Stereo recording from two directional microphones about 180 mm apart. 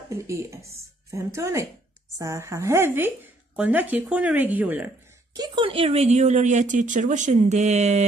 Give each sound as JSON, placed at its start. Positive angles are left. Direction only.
{"t": 0.1, "sound": "speech", "side_deg": -15}
{"t": 5.3, "sound": "speech", "side_deg": -25}